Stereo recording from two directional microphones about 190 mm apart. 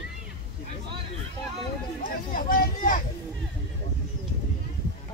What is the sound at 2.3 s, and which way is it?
Vehicle, 45° left (ahead or behind).